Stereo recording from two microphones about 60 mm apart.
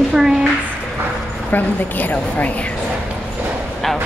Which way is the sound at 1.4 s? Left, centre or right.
Left.